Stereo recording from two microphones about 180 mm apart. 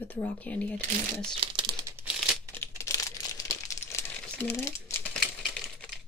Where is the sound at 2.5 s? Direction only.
15° left (ahead or behind).